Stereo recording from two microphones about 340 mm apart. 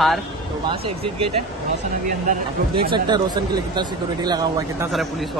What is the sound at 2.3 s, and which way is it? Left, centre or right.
Speech, centre.